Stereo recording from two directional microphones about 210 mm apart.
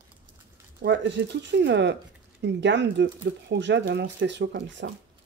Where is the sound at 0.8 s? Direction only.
55° right (ahead or behind).